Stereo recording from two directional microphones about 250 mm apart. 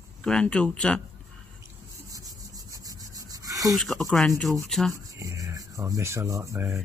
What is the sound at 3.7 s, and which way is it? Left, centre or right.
Speech, centre.